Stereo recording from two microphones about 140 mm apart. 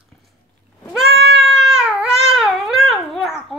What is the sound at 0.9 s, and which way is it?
Cat, centre (ahead or behind).